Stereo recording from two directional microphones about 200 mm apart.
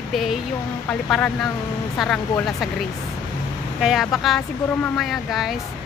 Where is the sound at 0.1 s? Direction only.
Centre (ahead or behind).